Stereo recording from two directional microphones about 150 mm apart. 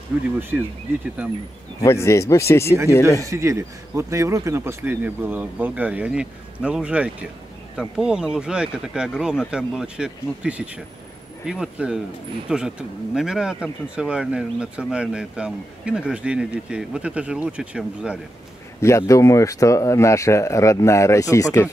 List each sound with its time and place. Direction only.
0.4 s speech: 15° right (ahead or behind)
1.8 s speech: 20° left (ahead or behind)
3.3 s speech: 20° right (ahead or behind)
18.8 s speech: 20° left (ahead or behind)